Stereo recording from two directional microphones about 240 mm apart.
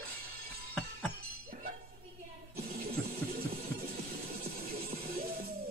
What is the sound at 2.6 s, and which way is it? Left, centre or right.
Music, right.